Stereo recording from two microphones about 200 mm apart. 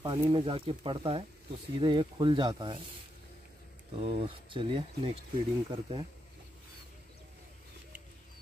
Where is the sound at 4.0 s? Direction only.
25° right (ahead or behind).